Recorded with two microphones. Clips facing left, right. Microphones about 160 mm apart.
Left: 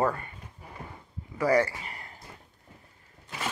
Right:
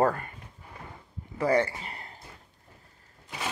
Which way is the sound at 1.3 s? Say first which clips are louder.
Left 1 dB; 25° right (ahead or behind).